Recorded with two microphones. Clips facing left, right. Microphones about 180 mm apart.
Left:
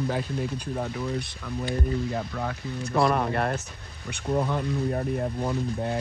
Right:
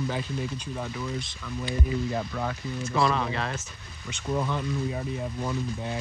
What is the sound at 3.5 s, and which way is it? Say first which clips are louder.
Speech: left 4 dB; 65° left (ahead or behind).